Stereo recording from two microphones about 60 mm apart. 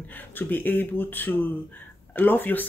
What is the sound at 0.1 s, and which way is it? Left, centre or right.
Speech, left.